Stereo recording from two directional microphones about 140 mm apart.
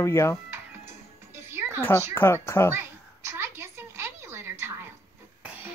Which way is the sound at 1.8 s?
15° left (ahead or behind).